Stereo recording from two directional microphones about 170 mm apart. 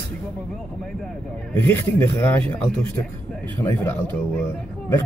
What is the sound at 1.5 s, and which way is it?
A man's voice, 10° left (ahead or behind).